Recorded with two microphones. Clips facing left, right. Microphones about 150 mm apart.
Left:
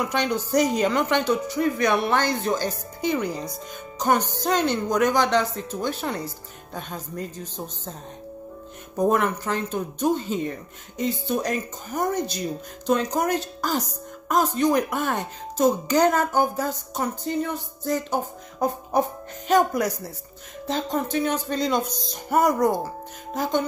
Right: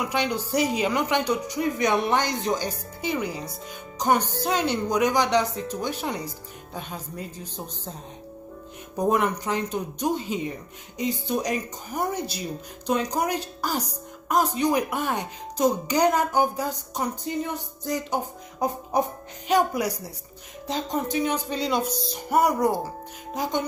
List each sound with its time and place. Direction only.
0.1 s speech: 10° right (ahead or behind)
8.9 s speech: 15° right (ahead or behind)